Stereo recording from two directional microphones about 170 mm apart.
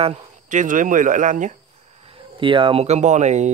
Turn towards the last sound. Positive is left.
turn(degrees=-45)  # may be behind; listen again after turning